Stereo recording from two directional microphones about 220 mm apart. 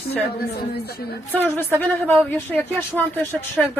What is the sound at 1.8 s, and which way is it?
Speech, 10° left (ahead or behind).